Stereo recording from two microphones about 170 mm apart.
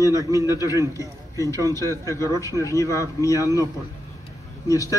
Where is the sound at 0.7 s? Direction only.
20° right (ahead or behind).